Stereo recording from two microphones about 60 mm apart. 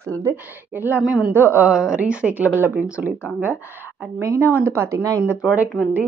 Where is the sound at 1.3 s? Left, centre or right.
Right.